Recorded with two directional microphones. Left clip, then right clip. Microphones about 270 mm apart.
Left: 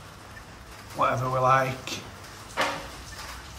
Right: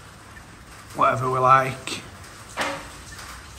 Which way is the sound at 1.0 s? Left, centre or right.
Centre.